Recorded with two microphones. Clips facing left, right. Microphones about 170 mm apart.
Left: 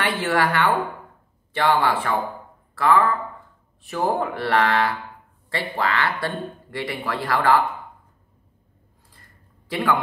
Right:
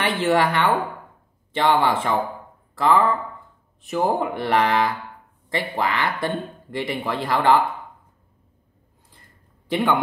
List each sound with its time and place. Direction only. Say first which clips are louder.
0.0 s speech: right 2 dB; 20° right (ahead or behind)